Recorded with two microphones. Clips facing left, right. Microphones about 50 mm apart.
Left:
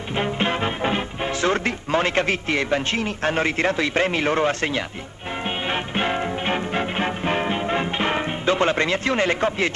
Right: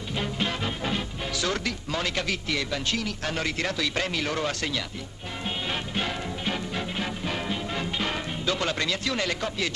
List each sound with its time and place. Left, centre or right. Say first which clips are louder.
0.1 s speech: left 7 dB; left
5.7 s music: left 8 dB; left